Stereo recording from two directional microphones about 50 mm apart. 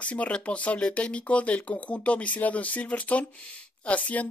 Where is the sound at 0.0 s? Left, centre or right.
Left.